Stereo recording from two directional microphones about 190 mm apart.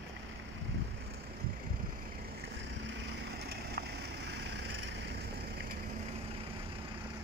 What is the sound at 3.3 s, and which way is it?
Vehicle, 60° right (ahead or behind).